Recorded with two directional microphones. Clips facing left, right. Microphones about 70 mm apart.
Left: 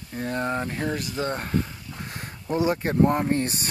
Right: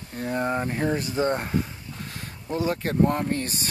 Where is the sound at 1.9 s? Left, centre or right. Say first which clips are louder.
Left 2 dB; left.